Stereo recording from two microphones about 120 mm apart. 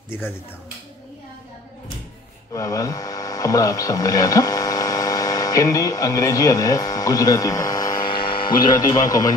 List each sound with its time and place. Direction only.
2.5 s hum: 30° left (ahead or behind)
8.3 s speech: 45° left (ahead or behind)